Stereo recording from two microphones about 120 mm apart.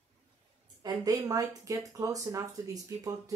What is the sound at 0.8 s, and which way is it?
Speech, 30° right (ahead or behind).